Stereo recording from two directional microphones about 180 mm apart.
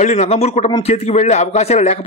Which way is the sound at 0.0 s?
40° left (ahead or behind).